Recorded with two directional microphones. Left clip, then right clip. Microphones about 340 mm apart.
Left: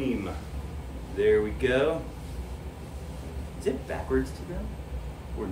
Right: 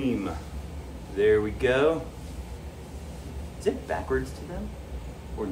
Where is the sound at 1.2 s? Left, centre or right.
Centre.